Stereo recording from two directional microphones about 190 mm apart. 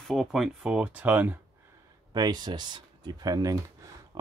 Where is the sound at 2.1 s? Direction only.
20° right (ahead or behind).